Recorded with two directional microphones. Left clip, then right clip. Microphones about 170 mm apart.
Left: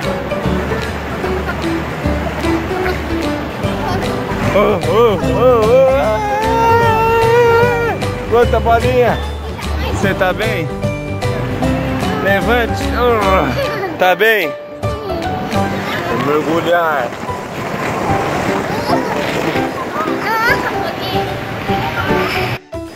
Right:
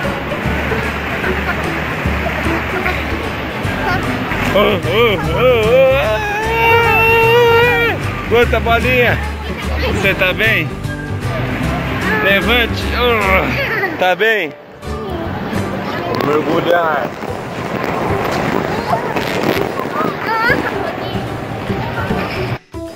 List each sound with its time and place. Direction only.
4.6 s music: 15° left (ahead or behind)
8.4 s speech: 10° left (ahead or behind)
12.3 s speech: 10° left (ahead or behind)
13.9 s speech: 50° left (ahead or behind)